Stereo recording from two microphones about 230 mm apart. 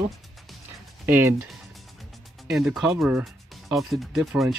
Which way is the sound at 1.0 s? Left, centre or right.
Centre.